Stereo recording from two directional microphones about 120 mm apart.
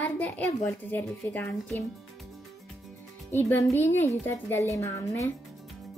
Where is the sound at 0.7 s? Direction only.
15° left (ahead or behind).